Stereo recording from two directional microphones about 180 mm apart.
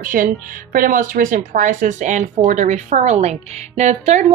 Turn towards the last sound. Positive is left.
turn(degrees=-40)  # may be behind; listen again after turning